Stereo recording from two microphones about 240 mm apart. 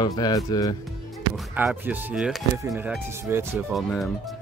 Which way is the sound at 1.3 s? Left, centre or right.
Centre.